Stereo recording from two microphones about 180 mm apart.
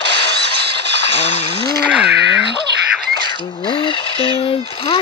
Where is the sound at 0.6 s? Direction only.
70° right (ahead or behind).